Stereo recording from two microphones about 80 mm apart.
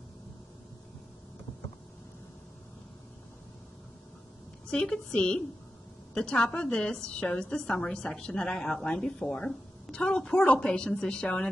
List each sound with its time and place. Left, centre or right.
4.6 s a woman's voice: centre